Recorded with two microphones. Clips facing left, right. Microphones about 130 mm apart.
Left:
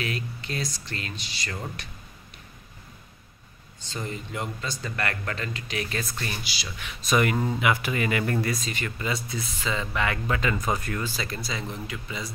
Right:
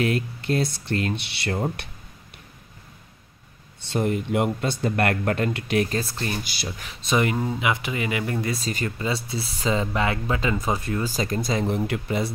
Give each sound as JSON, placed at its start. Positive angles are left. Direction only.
{"t": 0.0, "sound": "speech", "side_deg": -50}
{"t": 1.5, "sound": "speech", "side_deg": -45}
{"t": 3.9, "sound": "speech", "side_deg": -60}
{"t": 5.9, "sound": "speech", "side_deg": -30}
{"t": 6.3, "sound": "speech", "side_deg": -50}
{"t": 6.8, "sound": "speech", "side_deg": -30}
{"t": 8.5, "sound": "speech", "side_deg": -35}
{"t": 11.1, "sound": "speech", "side_deg": -40}
{"t": 11.7, "sound": "speech", "side_deg": -60}